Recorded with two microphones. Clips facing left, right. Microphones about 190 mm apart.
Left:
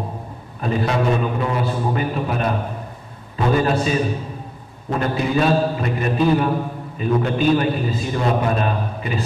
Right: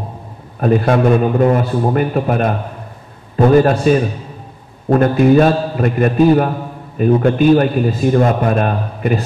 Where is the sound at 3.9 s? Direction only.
55° right (ahead or behind).